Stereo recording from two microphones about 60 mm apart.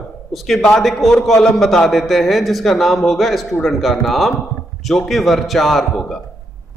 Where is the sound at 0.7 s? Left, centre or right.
Centre.